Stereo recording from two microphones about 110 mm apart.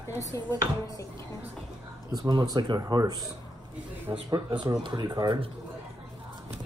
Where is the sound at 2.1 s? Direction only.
35° right (ahead or behind).